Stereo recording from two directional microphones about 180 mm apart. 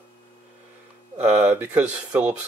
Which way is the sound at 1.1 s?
10° right (ahead or behind).